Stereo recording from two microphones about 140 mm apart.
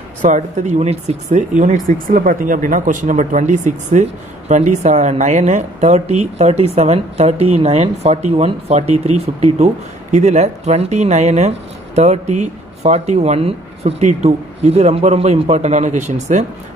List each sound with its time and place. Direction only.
0.2 s speech: 60° right (ahead or behind)
1.6 s speech: 70° right (ahead or behind)